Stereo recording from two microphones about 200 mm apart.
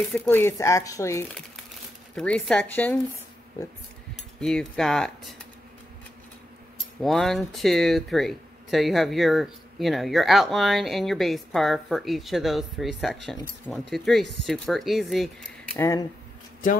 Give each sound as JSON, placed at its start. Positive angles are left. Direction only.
{"t": 0.1, "sound": "speech", "side_deg": 5}
{"t": 2.1, "sound": "speech", "side_deg": 5}
{"t": 4.4, "sound": "speech", "side_deg": 0}
{"t": 7.0, "sound": "speech", "side_deg": 0}
{"t": 15.8, "sound": "speech", "side_deg": 15}